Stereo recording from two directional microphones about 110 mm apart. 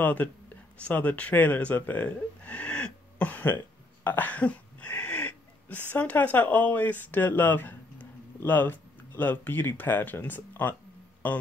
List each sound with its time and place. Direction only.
0.0 s speech: 15° left (ahead or behind)
0.7 s gasp: 10° left (ahead or behind)
5.9 s speech: 15° left (ahead or behind)